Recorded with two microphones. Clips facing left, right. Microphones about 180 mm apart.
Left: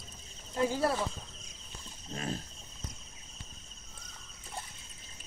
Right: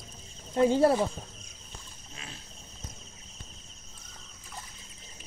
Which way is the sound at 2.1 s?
45° left (ahead or behind).